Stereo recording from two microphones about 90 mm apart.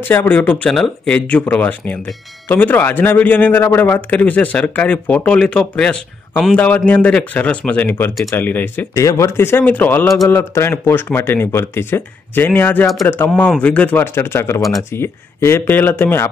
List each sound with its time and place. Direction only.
0.1 s speech: 20° left (ahead or behind)
0.7 s speech: 5° left (ahead or behind)
1.5 s speech: 20° left (ahead or behind)
8.9 s speech: 35° left (ahead or behind)
14.6 s speech: centre (ahead or behind)
14.9 s speech: 30° left (ahead or behind)